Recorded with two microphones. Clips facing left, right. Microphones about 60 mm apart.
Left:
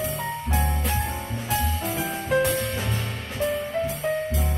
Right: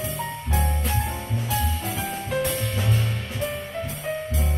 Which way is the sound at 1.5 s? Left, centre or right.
Left.